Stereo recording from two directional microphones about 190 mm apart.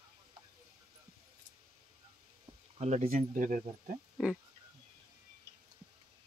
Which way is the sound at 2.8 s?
40° right (ahead or behind).